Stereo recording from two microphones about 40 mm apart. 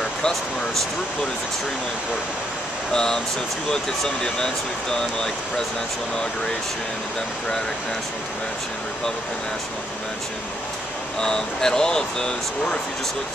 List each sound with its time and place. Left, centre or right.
2.9 s speech: centre
11.1 s speech: centre